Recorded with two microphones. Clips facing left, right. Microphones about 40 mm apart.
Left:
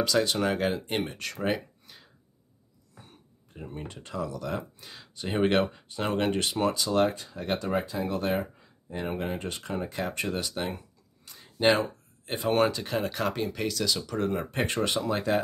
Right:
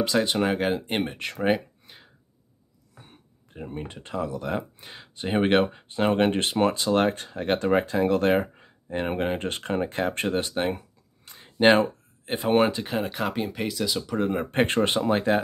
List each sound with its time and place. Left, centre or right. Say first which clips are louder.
0.0 s speech: right 2 dB; right
3.1 s speech: right 2 dB; right
11.2 s a sound: right 5 dB; right
12.4 s speech: right 3 dB; right
14.5 s speech: right 5 dB; right